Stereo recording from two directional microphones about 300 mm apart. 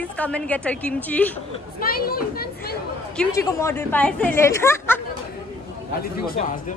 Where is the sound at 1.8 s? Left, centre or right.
Left.